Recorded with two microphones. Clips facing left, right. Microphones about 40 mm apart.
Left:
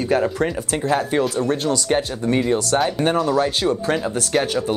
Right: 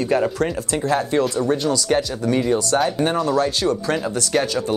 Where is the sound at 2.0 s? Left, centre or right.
Left.